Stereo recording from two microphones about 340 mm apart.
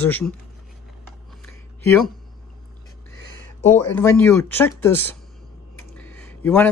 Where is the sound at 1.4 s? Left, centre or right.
Centre.